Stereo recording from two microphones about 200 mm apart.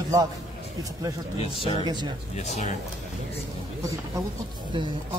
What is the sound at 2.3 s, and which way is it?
Speech, 35° left (ahead or behind).